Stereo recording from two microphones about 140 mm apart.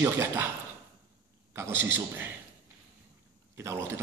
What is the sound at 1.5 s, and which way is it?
Speech, 15° right (ahead or behind).